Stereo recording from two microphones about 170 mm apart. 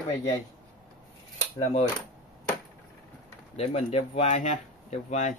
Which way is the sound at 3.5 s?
40° left (ahead or behind).